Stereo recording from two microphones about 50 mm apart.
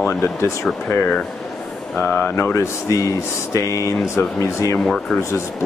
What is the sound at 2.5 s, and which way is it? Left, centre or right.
Speech, left.